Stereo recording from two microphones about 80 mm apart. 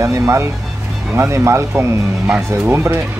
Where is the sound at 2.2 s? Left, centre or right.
Right.